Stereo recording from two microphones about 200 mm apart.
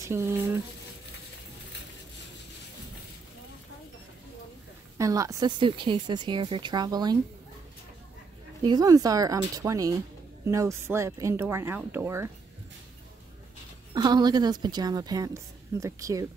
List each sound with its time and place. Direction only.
0.1 s speech: 10° right (ahead or behind)
4.9 s a woman's voice: 15° right (ahead or behind)
8.6 s speech: 20° right (ahead or behind)
13.9 s a woman's voice: 20° right (ahead or behind)